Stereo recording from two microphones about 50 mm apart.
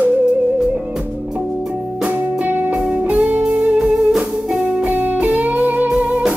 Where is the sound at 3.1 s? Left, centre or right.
Right.